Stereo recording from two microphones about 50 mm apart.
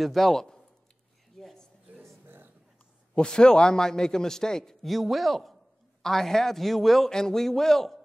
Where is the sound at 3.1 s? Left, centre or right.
Centre.